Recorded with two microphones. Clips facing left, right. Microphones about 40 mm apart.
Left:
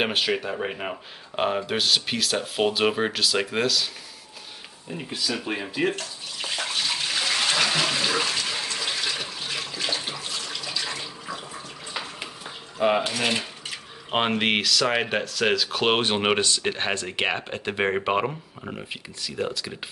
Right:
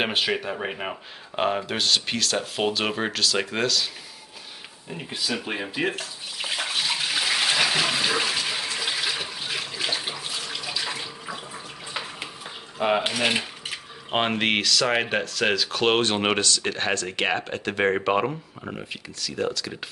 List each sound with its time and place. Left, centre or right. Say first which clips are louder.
0.0 s speech: even; centre
4.9 s bathtub: even; centre
12.7 s mechanisms: left 1 dB; centre
13.1 s mechanisms: right 1 dB; centre
14.1 s speech: even; centre
16.3 s speech: even; left; by 18.3 s centre
18.9 s speech: right 1 dB; centre